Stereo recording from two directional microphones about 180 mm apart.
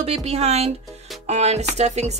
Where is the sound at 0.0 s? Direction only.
35° right (ahead or behind).